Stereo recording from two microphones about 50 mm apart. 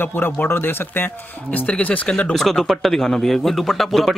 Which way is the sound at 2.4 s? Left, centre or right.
Centre.